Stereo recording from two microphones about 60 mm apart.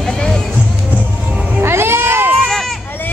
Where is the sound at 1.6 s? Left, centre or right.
Right.